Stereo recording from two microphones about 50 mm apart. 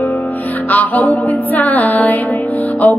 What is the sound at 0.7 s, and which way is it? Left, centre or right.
Music, left.